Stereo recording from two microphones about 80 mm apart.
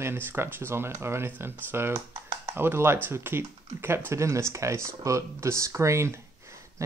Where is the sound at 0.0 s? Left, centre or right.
Right.